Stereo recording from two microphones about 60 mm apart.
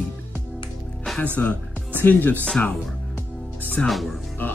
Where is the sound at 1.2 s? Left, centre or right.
Left.